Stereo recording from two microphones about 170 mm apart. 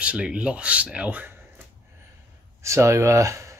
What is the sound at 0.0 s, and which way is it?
Speech, 5° right (ahead or behind).